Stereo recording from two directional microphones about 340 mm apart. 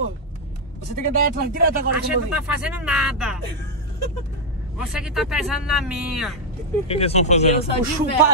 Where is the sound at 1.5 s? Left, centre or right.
Right.